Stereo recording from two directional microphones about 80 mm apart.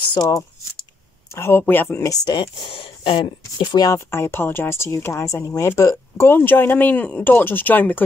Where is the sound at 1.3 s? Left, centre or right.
Left.